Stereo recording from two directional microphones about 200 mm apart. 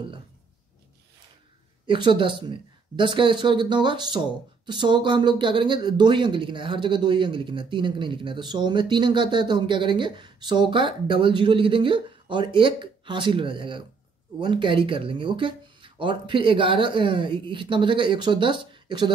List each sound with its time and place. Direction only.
1.9 s speech: 25° right (ahead or behind)